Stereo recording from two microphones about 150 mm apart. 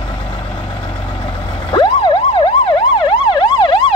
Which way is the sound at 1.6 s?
30° left (ahead or behind).